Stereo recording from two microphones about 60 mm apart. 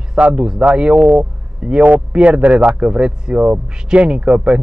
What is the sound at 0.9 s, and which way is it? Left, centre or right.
Speech, right.